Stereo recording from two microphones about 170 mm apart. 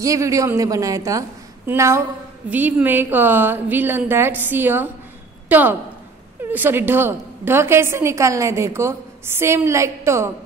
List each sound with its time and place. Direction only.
0.0 s a woman's voice: 20° right (ahead or behind)